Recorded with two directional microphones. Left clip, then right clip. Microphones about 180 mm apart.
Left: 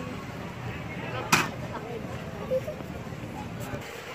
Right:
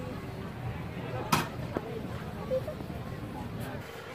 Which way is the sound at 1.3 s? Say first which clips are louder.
Left 6 dB; 45° right (ahead or behind).